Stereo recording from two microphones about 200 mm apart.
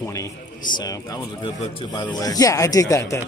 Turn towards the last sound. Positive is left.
turn(degrees=15)  # may be behind; listen again after turning